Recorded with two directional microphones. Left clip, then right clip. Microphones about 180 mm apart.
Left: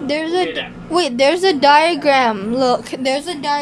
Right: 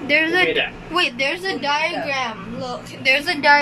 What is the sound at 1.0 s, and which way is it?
Speech, 50° left (ahead or behind).